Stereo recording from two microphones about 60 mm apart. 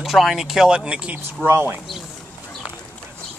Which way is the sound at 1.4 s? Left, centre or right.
Right.